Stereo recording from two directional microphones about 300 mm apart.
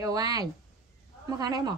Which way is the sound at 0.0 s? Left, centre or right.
Centre.